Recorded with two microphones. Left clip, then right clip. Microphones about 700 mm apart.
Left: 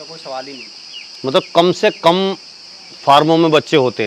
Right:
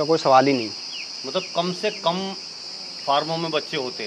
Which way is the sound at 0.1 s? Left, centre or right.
Right.